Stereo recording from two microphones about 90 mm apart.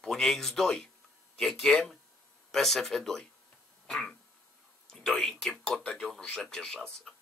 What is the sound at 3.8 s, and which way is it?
Throat clearing, 5° left (ahead or behind).